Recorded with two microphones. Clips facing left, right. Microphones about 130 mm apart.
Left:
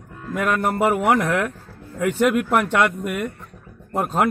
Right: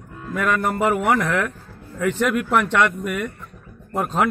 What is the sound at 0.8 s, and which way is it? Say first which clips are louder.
Speech: left 2 dB; 5° left (ahead or behind).